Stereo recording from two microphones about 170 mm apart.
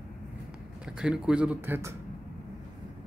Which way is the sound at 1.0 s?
5° right (ahead or behind).